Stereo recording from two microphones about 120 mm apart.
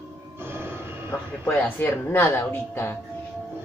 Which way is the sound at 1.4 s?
20° left (ahead or behind).